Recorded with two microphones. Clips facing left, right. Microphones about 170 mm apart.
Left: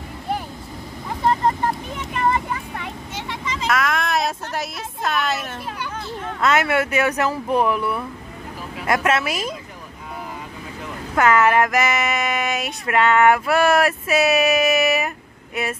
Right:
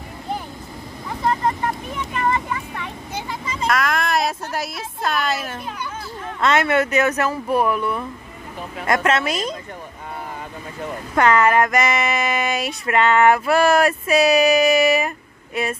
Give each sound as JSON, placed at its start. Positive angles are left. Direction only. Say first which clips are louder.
{"t": 3.2, "sound": "vehicle", "louder": "right 1 dB", "side_deg": 85}
{"t": 3.6, "sound": "speech", "louder": "right 1 dB", "side_deg": 0}
{"t": 11.1, "sound": "speech", "louder": "even", "side_deg": 5}